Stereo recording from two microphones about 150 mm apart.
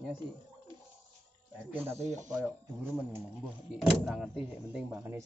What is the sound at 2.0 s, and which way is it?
Speech, 55° right (ahead or behind).